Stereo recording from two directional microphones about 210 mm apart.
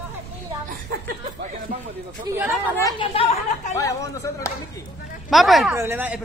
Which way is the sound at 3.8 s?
15° left (ahead or behind).